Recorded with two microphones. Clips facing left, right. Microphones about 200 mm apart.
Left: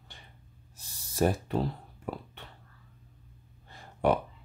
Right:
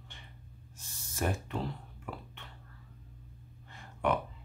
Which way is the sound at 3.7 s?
35° left (ahead or behind).